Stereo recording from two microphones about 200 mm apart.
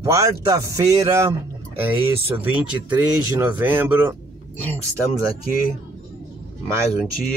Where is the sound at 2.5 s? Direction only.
10° right (ahead or behind).